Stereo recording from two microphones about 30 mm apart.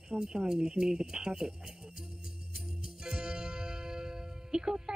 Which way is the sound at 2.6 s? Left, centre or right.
Right.